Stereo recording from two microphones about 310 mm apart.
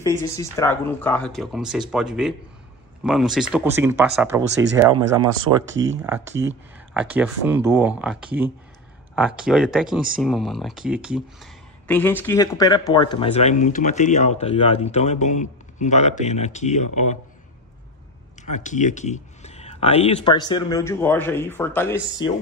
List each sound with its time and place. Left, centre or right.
0.0 s speech: centre
18.4 s speech: left; by 22.3 s centre